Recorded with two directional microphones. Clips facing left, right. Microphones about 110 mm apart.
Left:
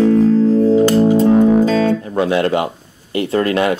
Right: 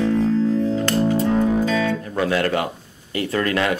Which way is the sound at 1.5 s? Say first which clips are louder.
Left 7 dB; 35° left (ahead or behind).